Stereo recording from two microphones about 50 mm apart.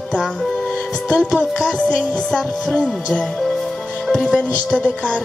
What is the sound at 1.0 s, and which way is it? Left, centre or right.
Music, centre.